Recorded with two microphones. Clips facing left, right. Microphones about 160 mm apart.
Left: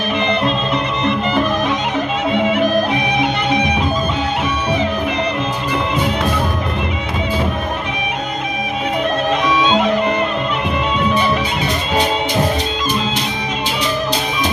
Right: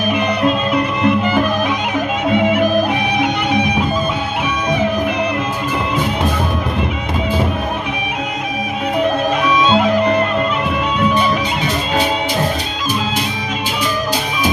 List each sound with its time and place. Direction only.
0.1 s music: 10° right (ahead or behind)
9.7 s music: 5° right (ahead or behind)